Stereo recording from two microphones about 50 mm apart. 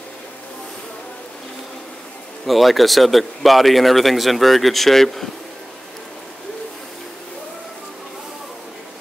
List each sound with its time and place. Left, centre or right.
2.4 s speech: centre